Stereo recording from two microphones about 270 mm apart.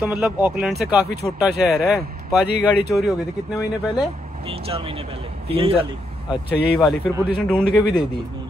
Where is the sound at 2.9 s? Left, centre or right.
Centre.